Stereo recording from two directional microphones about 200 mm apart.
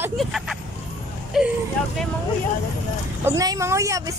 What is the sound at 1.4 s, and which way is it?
Speech, 5° right (ahead or behind).